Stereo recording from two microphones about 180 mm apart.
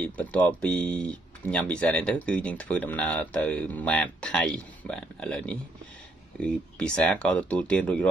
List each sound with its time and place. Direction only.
0.0 s speech: 5° left (ahead or behind)